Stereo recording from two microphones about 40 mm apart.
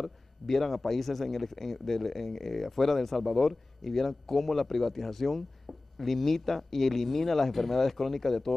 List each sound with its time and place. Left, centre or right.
0.0 s a man's voice: centre